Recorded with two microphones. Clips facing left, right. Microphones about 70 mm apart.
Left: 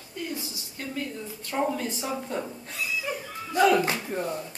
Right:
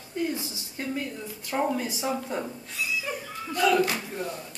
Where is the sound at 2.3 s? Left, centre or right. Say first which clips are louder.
Even; centre.